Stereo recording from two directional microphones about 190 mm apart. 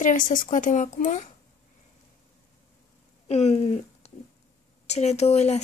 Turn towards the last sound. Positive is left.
turn(degrees=35)  # may be behind; listen again after turning